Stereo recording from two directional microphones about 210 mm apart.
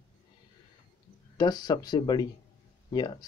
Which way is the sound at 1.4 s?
20° left (ahead or behind).